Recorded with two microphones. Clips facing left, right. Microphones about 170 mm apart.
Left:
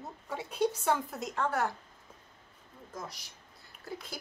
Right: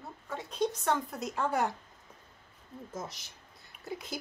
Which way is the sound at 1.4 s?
15° right (ahead or behind).